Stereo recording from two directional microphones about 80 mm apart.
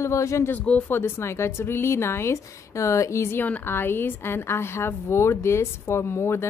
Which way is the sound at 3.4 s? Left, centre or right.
Left.